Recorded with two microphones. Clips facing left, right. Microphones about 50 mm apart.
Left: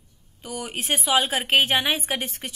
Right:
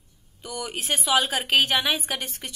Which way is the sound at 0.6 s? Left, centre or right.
Left.